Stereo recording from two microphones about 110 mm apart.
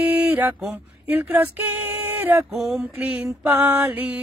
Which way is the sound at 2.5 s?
Centre (ahead or behind).